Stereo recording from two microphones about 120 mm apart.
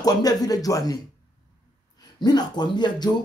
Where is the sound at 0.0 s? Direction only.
30° left (ahead or behind).